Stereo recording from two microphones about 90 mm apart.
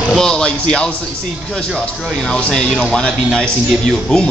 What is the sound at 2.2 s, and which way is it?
A man's voice, 10° left (ahead or behind).